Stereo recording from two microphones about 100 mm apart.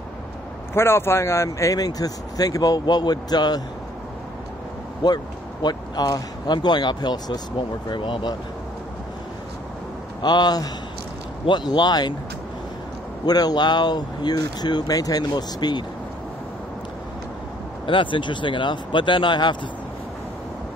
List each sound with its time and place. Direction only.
0.7 s speech: 25° left (ahead or behind); by 3.6 s 45° left (ahead or behind)
5.0 s speech: 45° left (ahead or behind)
10.2 s speech: 45° left (ahead or behind)
13.2 s speech: 40° left (ahead or behind)
17.8 s speech: 55° left (ahead or behind)